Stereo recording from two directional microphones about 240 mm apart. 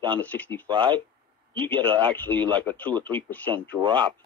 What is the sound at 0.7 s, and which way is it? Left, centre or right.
Speech, centre.